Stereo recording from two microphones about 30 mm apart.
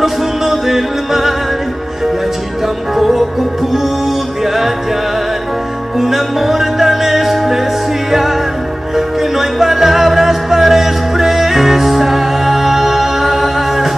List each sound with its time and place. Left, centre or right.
0.0 s music: centre
2.9 s music: centre
5.9 s music: centre